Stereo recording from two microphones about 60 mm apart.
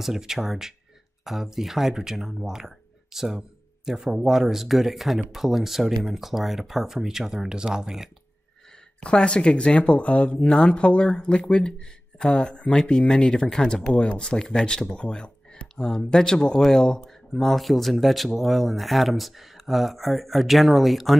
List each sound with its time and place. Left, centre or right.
0.0 s speech: centre
9.0 s speech: centre